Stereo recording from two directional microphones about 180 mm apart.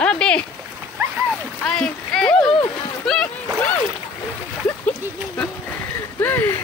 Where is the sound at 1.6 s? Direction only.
5° left (ahead or behind).